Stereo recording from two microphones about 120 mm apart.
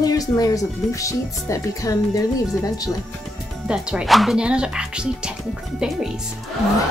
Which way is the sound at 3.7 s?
5° right (ahead or behind).